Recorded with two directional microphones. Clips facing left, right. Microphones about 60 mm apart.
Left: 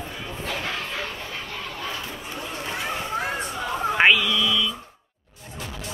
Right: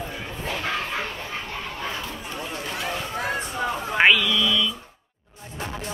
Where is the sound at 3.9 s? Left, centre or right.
Centre.